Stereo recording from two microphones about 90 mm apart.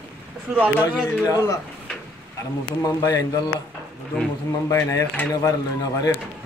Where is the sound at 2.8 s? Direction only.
40° left (ahead or behind).